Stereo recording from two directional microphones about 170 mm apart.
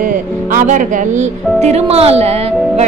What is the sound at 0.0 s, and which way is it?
A woman's voice, 55° right (ahead or behind).